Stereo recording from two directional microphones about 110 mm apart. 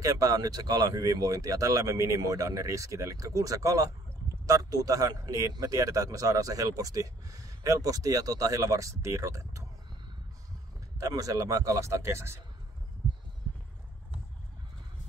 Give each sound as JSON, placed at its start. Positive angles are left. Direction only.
{"t": 0.0, "sound": "a man's voice", "side_deg": -30}
{"t": 11.0, "sound": "speech", "side_deg": -30}